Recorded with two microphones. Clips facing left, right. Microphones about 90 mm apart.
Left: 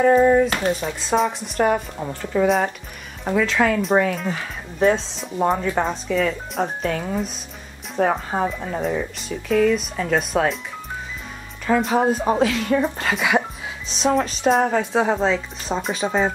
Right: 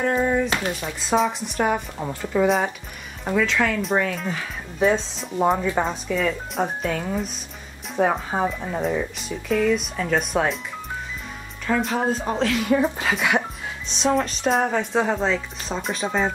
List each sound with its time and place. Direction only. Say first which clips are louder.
0.0 s speech: left 7 dB; 5° left (ahead or behind)
3.5 s speech: left 3 dB; 15° left (ahead or behind)
4.0 s speech: left 3 dB; centre (ahead or behind)
11.6 s speech: left 4 dB; 5° left (ahead or behind)
12.5 s speech: even; 5° right (ahead or behind)